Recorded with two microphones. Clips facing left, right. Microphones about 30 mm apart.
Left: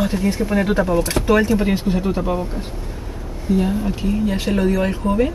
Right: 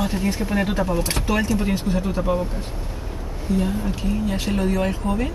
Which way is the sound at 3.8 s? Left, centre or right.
Centre.